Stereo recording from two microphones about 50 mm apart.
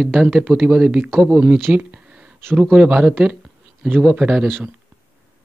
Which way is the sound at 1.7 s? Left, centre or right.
Right.